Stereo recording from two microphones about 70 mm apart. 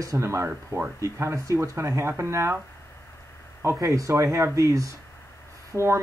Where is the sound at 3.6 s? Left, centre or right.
Right.